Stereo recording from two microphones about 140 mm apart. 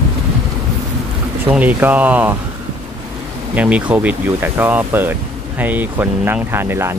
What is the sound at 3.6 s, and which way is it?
Speech, 10° right (ahead or behind).